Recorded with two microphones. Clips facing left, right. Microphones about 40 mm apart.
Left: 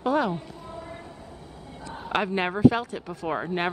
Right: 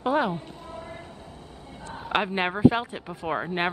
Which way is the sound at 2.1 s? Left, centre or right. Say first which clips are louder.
Even; centre.